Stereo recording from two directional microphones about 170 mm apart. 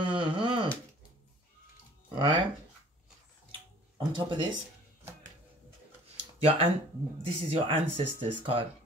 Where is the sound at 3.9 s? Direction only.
30° right (ahead or behind).